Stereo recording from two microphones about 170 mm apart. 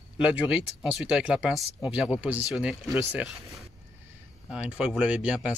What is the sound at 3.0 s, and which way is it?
Speech, 15° right (ahead or behind).